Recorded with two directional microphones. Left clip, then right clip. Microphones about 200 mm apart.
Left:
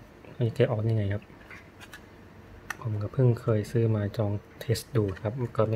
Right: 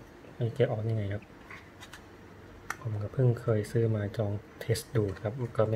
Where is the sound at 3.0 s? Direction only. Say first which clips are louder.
Left 4 dB; 10° left (ahead or behind).